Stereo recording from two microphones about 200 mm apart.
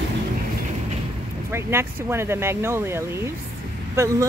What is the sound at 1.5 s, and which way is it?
Speech, 10° right (ahead or behind).